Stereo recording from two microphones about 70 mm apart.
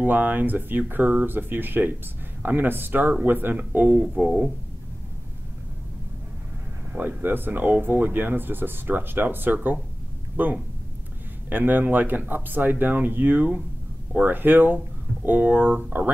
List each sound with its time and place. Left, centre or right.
0.0 s speech: right
6.9 s speech: right